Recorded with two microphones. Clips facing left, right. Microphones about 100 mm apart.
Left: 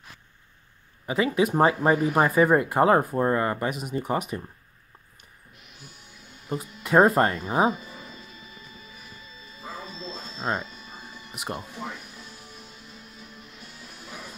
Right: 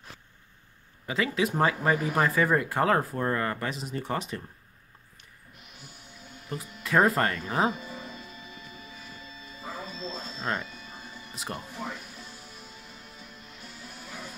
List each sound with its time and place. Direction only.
1.0 s speech: 25° left (ahead or behind)
6.5 s speech: 25° left (ahead or behind)
10.3 s music: 25° left (ahead or behind)